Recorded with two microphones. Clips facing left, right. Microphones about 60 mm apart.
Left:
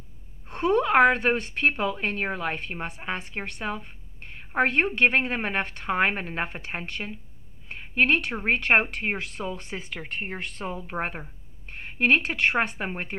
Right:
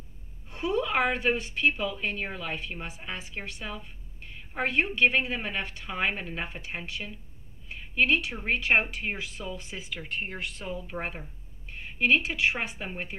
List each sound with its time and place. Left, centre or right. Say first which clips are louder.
0.5 s a woman's voice: left 6 dB; left